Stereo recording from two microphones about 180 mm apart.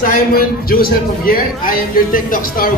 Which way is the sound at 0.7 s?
55° left (ahead or behind).